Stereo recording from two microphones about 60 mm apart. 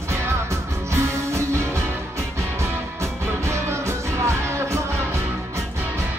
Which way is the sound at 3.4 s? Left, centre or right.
Right.